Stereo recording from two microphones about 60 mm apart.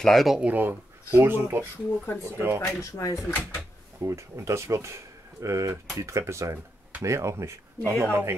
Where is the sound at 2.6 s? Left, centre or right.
Left.